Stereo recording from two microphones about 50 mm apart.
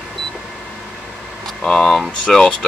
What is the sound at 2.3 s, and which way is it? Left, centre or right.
Speech, centre.